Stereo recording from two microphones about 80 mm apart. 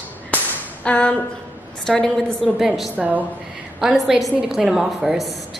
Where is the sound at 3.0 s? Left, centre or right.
Centre.